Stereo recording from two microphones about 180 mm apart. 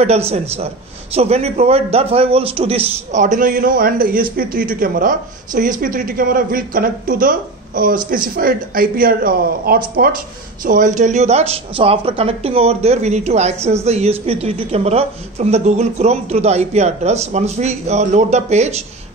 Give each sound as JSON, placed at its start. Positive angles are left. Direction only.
{"t": 0.0, "sound": "a man's voice", "side_deg": -35}